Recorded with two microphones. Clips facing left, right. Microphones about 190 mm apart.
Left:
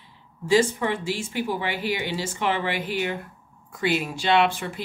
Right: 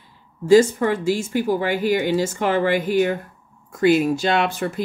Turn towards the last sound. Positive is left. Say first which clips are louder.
# right 1 dB
turn(degrees=-45)  # may be behind; listen again after turning